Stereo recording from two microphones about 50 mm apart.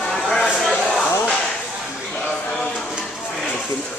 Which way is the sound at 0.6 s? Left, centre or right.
Centre.